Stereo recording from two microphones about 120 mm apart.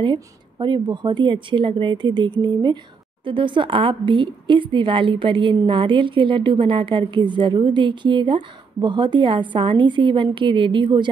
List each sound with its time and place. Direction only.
0.0 s a woman's voice: 40° right (ahead or behind)